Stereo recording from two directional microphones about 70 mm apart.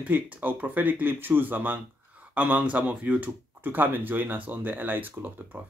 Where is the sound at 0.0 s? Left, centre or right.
Right.